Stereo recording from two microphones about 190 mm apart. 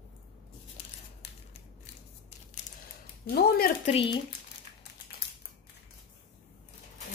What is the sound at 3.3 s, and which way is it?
Speech, 50° left (ahead or behind).